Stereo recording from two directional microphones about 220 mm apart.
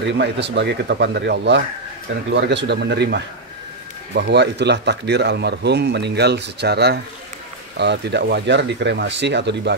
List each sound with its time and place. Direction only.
0.0 s speech: 50° right (ahead or behind)